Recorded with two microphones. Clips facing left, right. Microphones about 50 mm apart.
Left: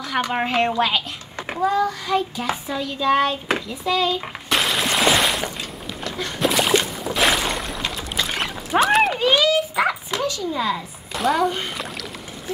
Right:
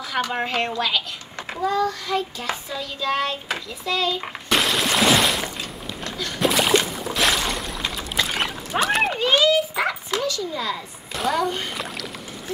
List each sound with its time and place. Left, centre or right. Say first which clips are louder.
0.2 s child singing: left 3 dB; centre
1.5 s child singing: left 2 dB; centre
4.2 s a sound: even; centre
6.4 s boat: even; centre
10.1 s a child's voice: left 1 dB; left
11.1 s speech: left 3 dB; centre